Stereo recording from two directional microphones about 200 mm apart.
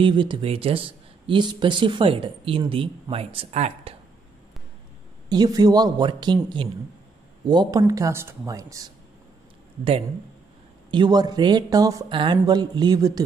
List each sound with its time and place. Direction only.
0.0 s speech: 25° right (ahead or behind)
5.3 s speech: 20° right (ahead or behind)
10.9 s speech: 20° right (ahead or behind)